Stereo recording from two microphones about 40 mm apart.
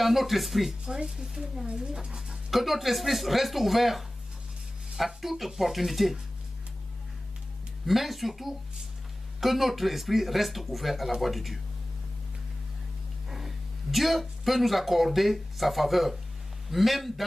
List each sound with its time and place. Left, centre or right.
0.0 s speech: centre
0.8 s speech: centre
2.5 s speech: centre
7.8 s speech: centre
13.9 s speech: centre